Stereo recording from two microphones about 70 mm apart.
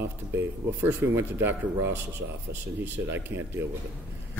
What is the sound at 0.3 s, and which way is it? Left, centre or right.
Speech, right.